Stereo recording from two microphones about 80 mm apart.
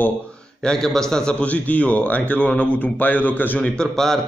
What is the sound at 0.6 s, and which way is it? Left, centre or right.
A man's voice, centre.